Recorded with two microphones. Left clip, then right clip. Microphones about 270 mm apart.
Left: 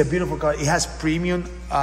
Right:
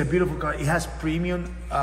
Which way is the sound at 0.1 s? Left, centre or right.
Left.